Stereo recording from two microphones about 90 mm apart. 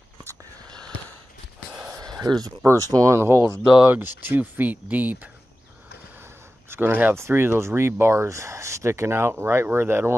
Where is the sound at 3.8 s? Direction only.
20° right (ahead or behind).